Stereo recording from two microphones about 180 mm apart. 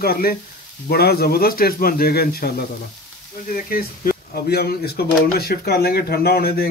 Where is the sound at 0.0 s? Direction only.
60° left (ahead or behind).